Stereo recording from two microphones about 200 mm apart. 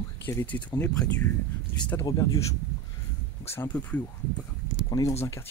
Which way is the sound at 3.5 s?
10° left (ahead or behind).